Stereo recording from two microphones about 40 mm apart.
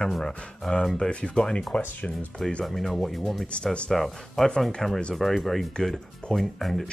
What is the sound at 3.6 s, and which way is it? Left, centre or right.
Speech, left.